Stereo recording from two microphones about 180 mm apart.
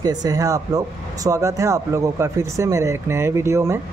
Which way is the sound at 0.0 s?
20° right (ahead or behind).